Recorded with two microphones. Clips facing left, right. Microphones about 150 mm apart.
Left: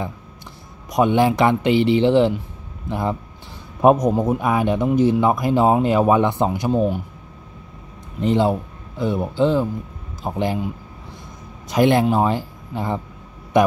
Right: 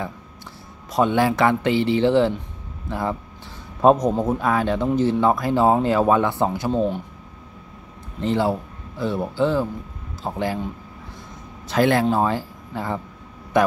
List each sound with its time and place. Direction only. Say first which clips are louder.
0.8 s speech: left 2 dB; 15° left (ahead or behind)
8.2 s speech: left 3 dB; 15° left (ahead or behind)